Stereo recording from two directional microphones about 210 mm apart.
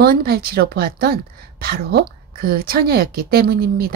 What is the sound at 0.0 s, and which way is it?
Speech, 45° right (ahead or behind).